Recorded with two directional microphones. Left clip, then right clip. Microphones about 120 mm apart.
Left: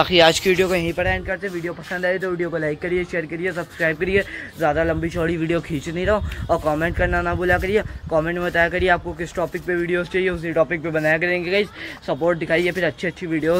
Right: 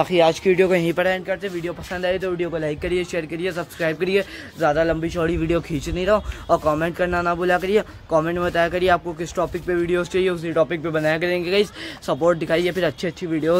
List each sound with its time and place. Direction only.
0.0 s speech: 5° right (ahead or behind)
0.4 s speech: 25° right (ahead or behind)
1.2 s a man's voice: 10° right (ahead or behind)
5.2 s a man's voice: 15° right (ahead or behind)
13.2 s a man's voice: 20° right (ahead or behind)